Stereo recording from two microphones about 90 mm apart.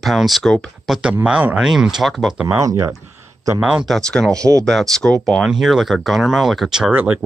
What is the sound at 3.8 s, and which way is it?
Speech, 5° left (ahead or behind).